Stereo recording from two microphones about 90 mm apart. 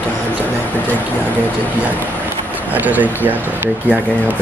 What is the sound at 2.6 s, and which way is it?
Speech, 20° right (ahead or behind).